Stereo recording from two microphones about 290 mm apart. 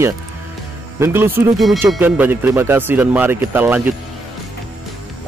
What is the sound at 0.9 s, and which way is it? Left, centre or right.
Speech, centre.